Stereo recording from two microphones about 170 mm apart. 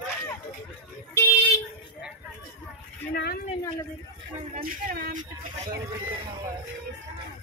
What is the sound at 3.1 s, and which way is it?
Speech, 70° left (ahead or behind).